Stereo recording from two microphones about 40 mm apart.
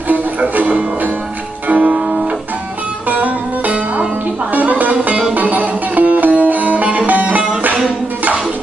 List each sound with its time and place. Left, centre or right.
0.6 s music: right
3.1 s music: right